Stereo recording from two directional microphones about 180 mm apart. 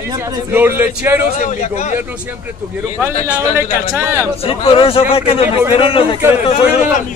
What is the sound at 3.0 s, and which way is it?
Speech, 10° right (ahead or behind).